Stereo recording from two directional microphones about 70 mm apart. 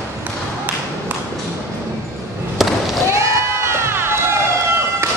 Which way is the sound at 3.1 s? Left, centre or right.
Right.